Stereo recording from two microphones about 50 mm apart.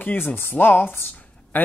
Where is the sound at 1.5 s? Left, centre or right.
Left.